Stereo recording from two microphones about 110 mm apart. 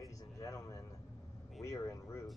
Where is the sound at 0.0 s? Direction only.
30° left (ahead or behind).